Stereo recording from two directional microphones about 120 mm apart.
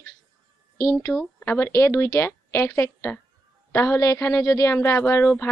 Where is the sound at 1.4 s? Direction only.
20° left (ahead or behind).